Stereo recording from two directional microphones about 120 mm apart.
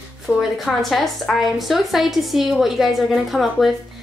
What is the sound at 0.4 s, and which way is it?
A woman's voice, centre (ahead or behind).